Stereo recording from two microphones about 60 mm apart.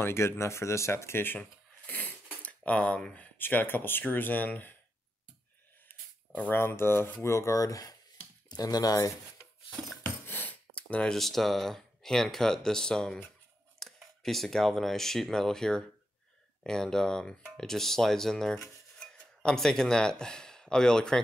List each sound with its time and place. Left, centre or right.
0.0 s speech: left
1.2 s a sound: left
3.3 s speech: left
6.5 s speech: left
10.0 s a sound: left
10.7 s a sound: left
11.1 s speech: centre
17.6 s cutlery: centre
19.1 s speech: centre